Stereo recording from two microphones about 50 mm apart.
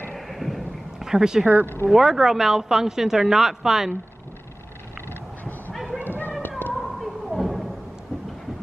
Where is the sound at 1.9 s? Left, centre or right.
Centre.